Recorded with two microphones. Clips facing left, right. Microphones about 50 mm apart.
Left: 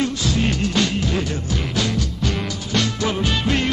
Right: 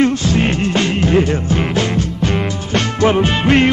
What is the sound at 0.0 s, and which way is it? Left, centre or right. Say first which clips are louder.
Music: right 7 dB; right.